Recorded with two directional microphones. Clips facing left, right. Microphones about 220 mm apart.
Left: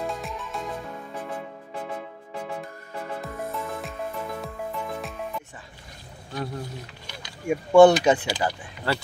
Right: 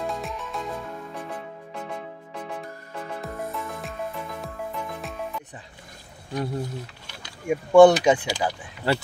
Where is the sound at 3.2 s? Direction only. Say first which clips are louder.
Even; centre (ahead or behind).